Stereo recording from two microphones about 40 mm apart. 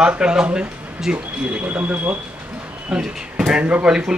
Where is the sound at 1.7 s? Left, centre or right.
Right.